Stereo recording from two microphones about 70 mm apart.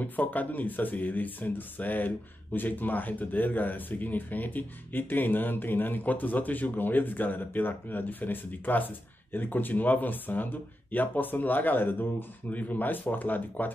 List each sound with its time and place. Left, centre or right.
0.0 s speech: left